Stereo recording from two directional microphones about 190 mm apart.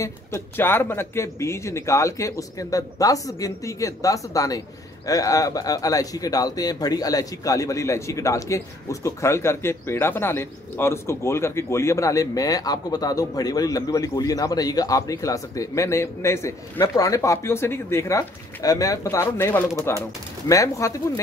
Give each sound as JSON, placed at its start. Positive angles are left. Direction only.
{"t": 0.0, "sound": "speech", "side_deg": 10}